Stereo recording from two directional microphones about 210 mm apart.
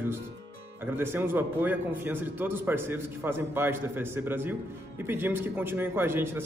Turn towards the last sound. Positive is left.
turn(degrees=-10)  # may be behind; listen again after turning